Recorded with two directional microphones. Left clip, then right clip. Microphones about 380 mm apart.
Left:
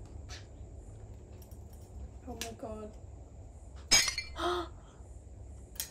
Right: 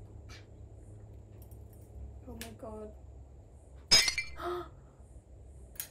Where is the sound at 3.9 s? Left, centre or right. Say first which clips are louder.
Right 2 dB; centre.